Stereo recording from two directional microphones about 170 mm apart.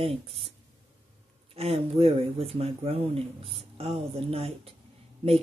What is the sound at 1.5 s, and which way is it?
Speech, 35° right (ahead or behind).